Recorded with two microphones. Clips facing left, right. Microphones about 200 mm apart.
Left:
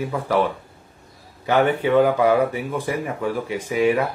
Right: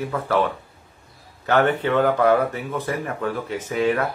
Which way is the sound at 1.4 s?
10° left (ahead or behind).